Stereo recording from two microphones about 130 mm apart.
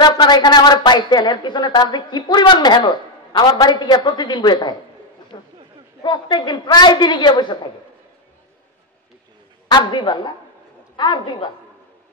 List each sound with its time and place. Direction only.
0.0 s a woman's voice: 35° left (ahead or behind)
9.7 s a woman's voice: 35° left (ahead or behind)